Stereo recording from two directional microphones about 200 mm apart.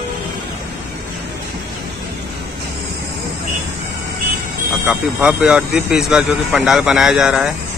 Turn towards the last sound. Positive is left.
turn(degrees=0)  # may be behind; listen again after turning